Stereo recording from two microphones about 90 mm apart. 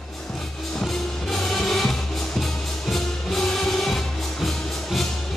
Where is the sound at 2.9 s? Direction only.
Centre (ahead or behind).